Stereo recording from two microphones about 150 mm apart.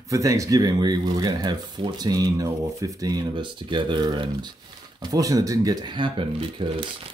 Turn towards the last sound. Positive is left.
turn(degrees=-30)  # may be behind; listen again after turning